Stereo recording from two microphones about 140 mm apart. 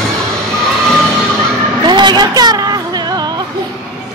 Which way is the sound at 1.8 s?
30° right (ahead or behind).